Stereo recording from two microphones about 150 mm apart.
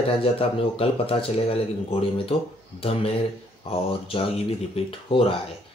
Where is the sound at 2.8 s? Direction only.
40° left (ahead or behind).